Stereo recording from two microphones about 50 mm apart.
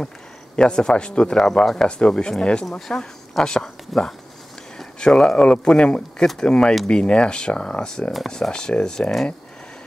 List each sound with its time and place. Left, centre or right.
0.6 s speech: centre